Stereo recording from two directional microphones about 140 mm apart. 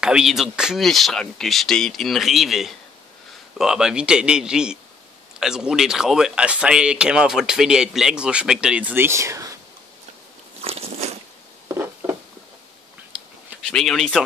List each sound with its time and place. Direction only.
0.0 s speech: 5° right (ahead or behind); by 9.6 s 20° right (ahead or behind)
10.6 s biting: 45° right (ahead or behind)
11.7 s a sound: 15° right (ahead or behind)
13.7 s speech: 5° left (ahead or behind)